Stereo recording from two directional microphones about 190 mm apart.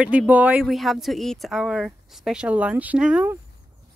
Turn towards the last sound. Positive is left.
turn(degrees=-5)  # may be behind; listen again after turning